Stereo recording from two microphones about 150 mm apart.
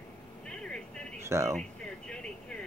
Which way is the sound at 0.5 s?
5° left (ahead or behind).